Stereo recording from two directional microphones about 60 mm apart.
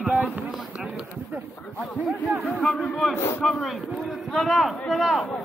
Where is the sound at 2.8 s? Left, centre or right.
Centre.